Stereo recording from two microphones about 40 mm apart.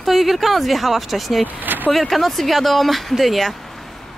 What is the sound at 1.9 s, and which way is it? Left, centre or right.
Speech, centre.